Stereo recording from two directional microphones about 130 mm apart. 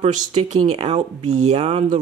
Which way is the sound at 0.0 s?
55° right (ahead or behind).